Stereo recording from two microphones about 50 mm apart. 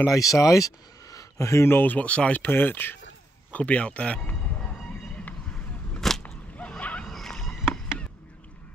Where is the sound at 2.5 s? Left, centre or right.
Left.